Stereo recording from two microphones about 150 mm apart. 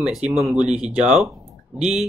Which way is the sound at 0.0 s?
5° right (ahead or behind).